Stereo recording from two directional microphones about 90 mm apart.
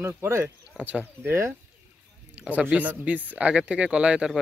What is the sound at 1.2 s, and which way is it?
Speech, 30° right (ahead or behind).